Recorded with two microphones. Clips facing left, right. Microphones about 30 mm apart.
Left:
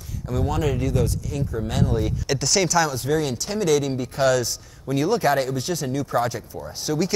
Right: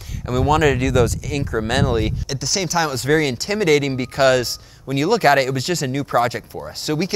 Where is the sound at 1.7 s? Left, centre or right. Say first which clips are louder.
Right 5 dB; right.